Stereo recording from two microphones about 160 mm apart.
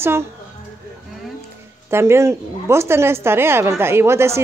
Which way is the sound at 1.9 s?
15° right (ahead or behind).